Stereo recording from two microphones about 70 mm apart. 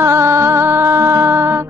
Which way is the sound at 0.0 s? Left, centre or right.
Right.